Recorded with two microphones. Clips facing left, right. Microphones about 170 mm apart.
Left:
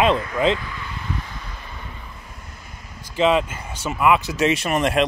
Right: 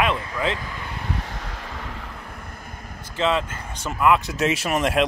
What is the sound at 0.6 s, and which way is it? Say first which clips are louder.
Vehicle: even; 40° right (ahead or behind).